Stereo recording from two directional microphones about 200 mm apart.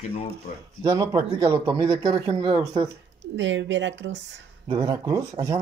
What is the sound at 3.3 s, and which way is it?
Speech, 65° right (ahead or behind).